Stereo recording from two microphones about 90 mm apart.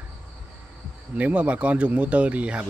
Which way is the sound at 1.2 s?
15° right (ahead or behind).